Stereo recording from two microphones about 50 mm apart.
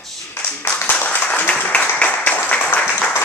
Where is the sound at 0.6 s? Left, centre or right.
Left.